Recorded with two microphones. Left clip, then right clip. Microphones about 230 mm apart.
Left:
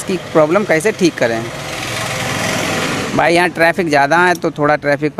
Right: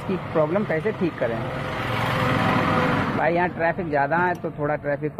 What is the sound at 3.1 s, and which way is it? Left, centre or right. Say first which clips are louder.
Speech: left 15 dB; left.